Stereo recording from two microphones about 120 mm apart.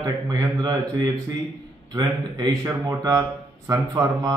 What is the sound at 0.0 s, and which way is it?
A man's voice, 30° right (ahead or behind).